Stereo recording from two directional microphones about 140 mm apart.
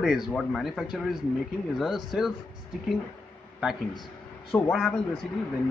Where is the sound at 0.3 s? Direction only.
5° left (ahead or behind).